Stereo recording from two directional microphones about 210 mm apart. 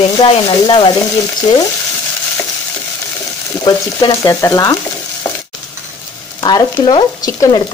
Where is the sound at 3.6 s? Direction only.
20° left (ahead or behind).